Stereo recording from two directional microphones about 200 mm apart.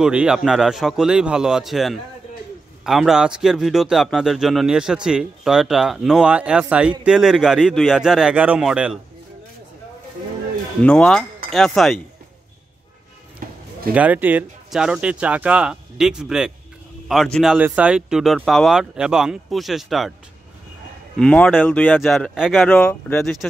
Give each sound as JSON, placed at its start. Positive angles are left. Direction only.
{"t": 0.0, "sound": "speech", "side_deg": -5}
{"t": 10.8, "sound": "speech", "side_deg": 5}
{"t": 13.4, "sound": "a sound", "side_deg": -45}
{"t": 13.9, "sound": "speech", "side_deg": -5}
{"t": 21.2, "sound": "speech", "side_deg": 5}